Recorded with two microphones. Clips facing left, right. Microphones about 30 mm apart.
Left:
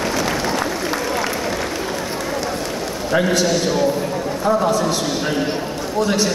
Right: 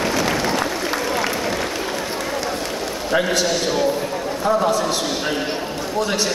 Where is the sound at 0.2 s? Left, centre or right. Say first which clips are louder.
Even; right.